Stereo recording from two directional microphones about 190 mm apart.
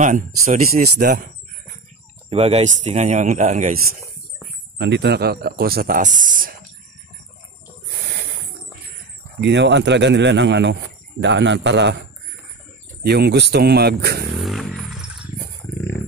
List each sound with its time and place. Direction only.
0.0 s speech: 40° right (ahead or behind)
0.9 s speech: 55° right (ahead or behind)
2.2 s speech: 30° right (ahead or behind)
4.7 s speech: 65° right (ahead or behind); by 6.5 s 45° right (ahead or behind)
9.4 s speech: 65° right (ahead or behind)
13.0 s speech: 60° right (ahead or behind)
14.4 s a sound: centre (ahead or behind)